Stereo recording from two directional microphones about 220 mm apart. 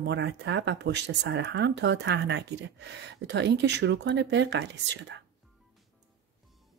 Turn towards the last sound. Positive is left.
turn(degrees=-55)  # may be behind; listen again after turning